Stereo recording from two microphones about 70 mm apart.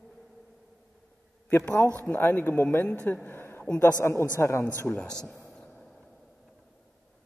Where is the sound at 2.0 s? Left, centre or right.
Left.